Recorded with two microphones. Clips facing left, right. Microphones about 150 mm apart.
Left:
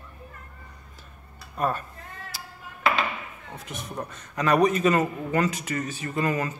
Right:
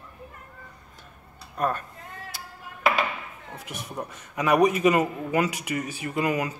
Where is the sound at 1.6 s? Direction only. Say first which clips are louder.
Even; 5° left (ahead or behind).